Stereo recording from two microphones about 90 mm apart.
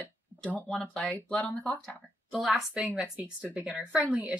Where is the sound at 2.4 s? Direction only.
5° right (ahead or behind).